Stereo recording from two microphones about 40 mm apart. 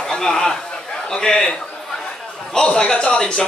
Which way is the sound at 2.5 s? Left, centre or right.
Centre.